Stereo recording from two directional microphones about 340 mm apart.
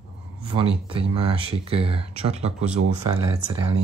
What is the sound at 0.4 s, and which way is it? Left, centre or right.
Speech, centre.